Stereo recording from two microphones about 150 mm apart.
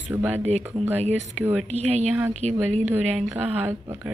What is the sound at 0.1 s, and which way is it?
Speech, 10° right (ahead or behind).